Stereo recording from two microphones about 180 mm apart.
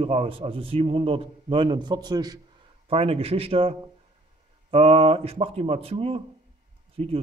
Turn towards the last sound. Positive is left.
turn(degrees=-35)  # may be behind; listen again after turning